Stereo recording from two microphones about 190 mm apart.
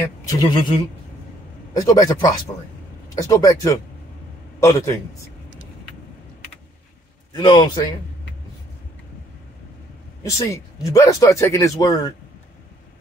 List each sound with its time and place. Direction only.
0.2 s speech: 20° left (ahead or behind)
7.3 s a man's voice: 25° left (ahead or behind)
10.2 s speech: 15° left (ahead or behind)